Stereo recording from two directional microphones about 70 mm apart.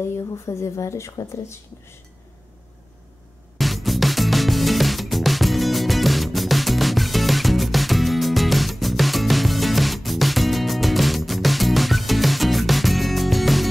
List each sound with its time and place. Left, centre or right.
0.5 s speech: left
3.5 s music: centre